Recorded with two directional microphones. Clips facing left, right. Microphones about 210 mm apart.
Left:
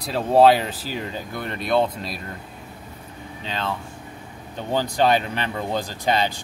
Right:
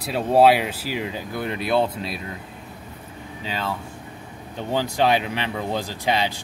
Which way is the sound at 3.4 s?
5° right (ahead or behind).